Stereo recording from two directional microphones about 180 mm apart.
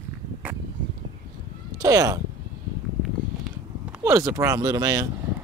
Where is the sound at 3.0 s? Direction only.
Centre (ahead or behind).